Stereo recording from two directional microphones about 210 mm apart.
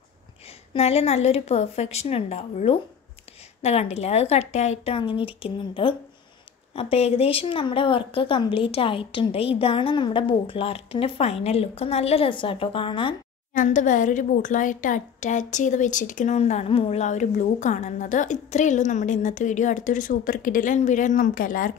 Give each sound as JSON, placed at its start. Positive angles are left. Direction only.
{"t": 0.7, "sound": "a woman's voice", "side_deg": 30}
{"t": 13.5, "sound": "a woman's voice", "side_deg": 35}